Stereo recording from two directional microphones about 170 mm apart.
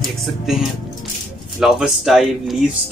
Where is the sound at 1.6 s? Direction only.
5° right (ahead or behind).